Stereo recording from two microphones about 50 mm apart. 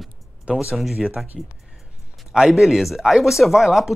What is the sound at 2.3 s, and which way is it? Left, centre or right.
Speech, centre.